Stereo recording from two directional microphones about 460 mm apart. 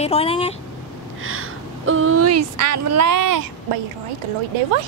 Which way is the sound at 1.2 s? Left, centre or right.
Right.